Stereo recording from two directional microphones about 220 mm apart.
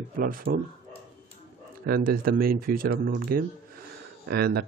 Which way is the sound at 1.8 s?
40° right (ahead or behind).